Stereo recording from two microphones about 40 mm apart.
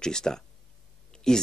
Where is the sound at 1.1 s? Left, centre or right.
Centre.